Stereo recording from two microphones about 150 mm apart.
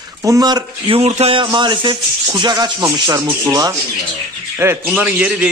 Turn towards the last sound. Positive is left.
turn(degrees=-5)  # may be behind; listen again after turning